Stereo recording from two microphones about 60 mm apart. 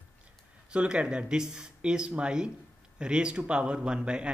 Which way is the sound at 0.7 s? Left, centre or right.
Centre.